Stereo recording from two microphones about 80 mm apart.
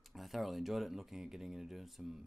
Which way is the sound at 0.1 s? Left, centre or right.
Centre.